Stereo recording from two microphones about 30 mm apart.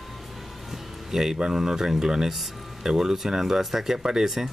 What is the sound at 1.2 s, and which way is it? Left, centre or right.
Speech, right.